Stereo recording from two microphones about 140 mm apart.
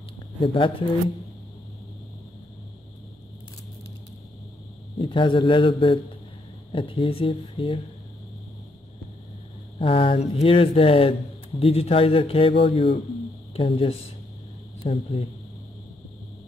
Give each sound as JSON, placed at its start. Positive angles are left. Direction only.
{"t": 0.4, "sound": "speech", "side_deg": 40}
{"t": 4.9, "sound": "speech", "side_deg": 35}
{"t": 9.8, "sound": "speech", "side_deg": 40}